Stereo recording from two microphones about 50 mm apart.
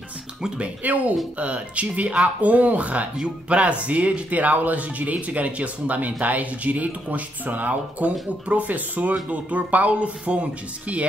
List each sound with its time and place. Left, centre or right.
0.6 s speech: right